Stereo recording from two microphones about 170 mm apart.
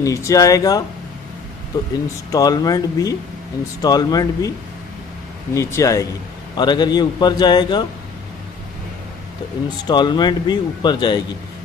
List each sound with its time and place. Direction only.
0.0 s speech: 20° left (ahead or behind)
5.5 s speech: 20° left (ahead or behind)
9.8 s speech: 25° left (ahead or behind)